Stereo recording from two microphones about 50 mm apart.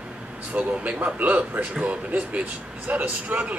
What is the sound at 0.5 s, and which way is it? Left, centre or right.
Speech, right.